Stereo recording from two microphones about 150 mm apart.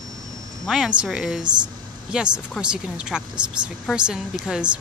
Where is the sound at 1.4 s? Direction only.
30° right (ahead or behind).